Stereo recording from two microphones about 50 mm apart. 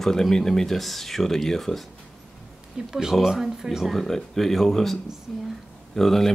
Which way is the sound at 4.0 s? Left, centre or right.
Centre.